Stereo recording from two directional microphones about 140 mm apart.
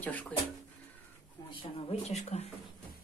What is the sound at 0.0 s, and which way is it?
Speech, 10° left (ahead or behind).